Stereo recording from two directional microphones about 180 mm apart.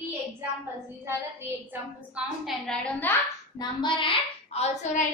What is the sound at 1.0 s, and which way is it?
A woman's voice, 15° right (ahead or behind).